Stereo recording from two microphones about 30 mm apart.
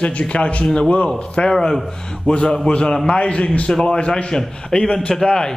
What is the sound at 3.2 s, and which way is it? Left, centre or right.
Speech, left.